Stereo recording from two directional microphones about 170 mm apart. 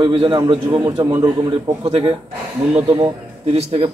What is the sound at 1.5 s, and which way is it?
A man's voice, 35° right (ahead or behind).